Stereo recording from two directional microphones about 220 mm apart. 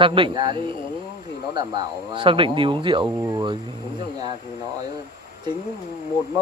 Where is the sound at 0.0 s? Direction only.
20° right (ahead or behind).